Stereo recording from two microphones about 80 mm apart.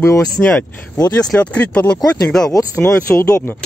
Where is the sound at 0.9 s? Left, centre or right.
Left.